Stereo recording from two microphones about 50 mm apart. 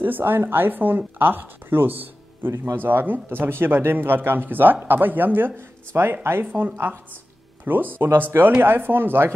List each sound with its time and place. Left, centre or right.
0.2 s speech: right
2.5 s speech: right
2.8 s speech: right